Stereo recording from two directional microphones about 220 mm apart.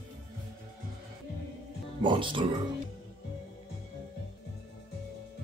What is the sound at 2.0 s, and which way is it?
Speech, 20° right (ahead or behind).